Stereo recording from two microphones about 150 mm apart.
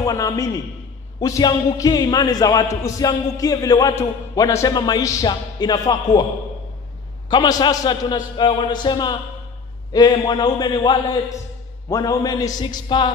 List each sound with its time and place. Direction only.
0.0 s a man's voice: 20° left (ahead or behind)
7.2 s speech: 25° left (ahead or behind)